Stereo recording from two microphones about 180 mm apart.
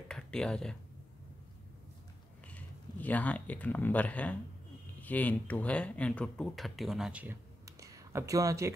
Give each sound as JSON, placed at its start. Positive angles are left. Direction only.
{"t": 0.1, "sound": "speech", "side_deg": 5}
{"t": 2.4, "sound": "speech", "side_deg": 10}
{"t": 7.6, "sound": "a sound", "side_deg": -20}